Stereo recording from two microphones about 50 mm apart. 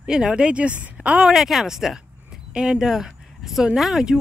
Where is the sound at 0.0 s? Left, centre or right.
Centre.